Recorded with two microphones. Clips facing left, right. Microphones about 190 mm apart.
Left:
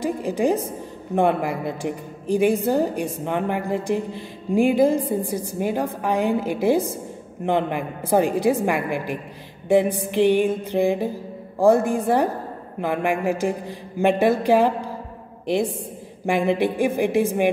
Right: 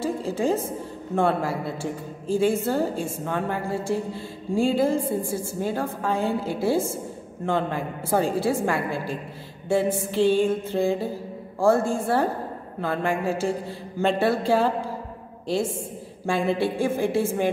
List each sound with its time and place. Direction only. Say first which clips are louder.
0.0 s a woman's voice: left 3 dB; 15° left (ahead or behind)